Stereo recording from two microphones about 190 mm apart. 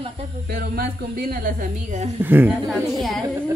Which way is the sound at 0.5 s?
55° right (ahead or behind).